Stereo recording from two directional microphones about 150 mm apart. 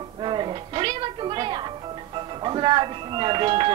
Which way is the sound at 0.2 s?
35° right (ahead or behind).